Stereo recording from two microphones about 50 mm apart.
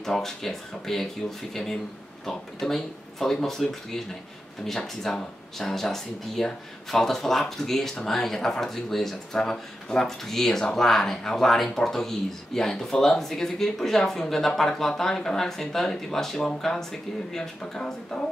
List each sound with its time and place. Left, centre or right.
0.0 s speech: centre